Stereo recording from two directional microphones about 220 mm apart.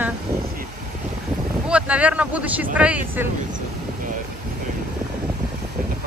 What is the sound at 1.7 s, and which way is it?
Speech, 5° right (ahead or behind).